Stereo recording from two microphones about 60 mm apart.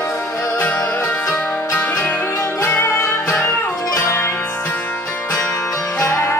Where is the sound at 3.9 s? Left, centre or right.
Left.